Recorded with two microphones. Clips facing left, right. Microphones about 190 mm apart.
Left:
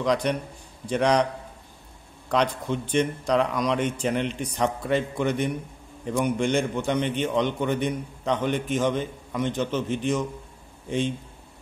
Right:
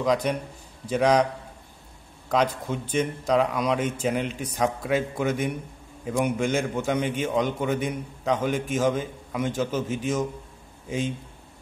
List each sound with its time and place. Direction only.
0.0 s a man's voice: centre (ahead or behind)
2.3 s a man's voice: 5° right (ahead or behind)